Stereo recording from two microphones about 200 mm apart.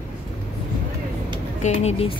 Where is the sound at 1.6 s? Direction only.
35° left (ahead or behind).